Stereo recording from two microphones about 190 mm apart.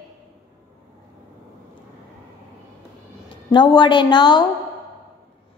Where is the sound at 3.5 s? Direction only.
25° left (ahead or behind).